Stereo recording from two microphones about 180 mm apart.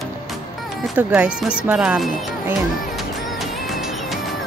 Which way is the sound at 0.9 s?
5° right (ahead or behind).